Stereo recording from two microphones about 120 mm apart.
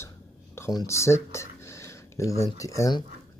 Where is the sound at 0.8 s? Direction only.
25° left (ahead or behind).